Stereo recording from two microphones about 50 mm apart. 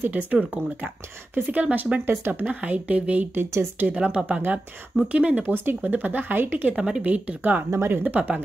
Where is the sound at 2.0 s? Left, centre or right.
Right.